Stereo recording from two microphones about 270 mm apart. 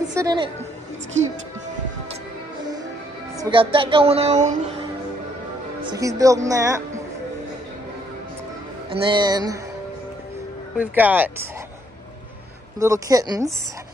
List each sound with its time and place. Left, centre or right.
0.1 s a woman's voice: centre
3.3 s speech: centre
5.9 s speech: centre
8.9 s speech: centre
10.8 s speech: centre
12.7 s speech: centre